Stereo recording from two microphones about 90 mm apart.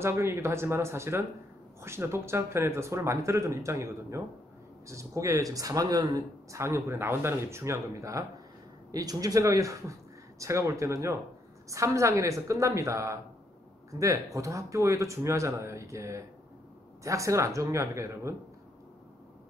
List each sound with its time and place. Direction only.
0.0 s speech: 30° right (ahead or behind)